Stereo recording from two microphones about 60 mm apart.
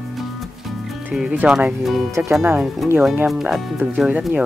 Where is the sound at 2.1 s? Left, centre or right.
Right.